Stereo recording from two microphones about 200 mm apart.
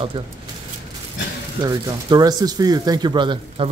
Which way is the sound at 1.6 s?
20° right (ahead or behind).